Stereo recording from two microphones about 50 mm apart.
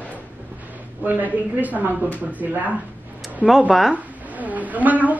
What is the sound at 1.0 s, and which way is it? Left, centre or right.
A woman's voice, right.